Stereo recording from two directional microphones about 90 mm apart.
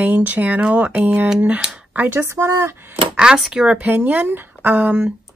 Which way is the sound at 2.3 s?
35° right (ahead or behind).